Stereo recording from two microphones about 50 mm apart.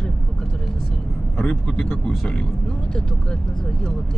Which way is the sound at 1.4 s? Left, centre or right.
Centre.